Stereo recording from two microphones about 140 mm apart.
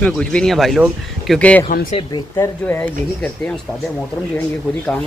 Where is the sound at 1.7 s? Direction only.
90° left.